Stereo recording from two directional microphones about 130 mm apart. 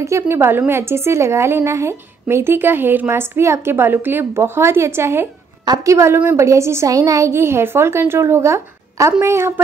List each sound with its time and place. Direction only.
0.0 s a woman's voice: 20° right (ahead or behind)